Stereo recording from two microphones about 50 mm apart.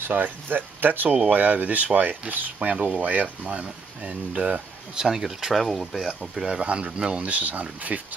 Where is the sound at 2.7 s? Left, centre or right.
Right.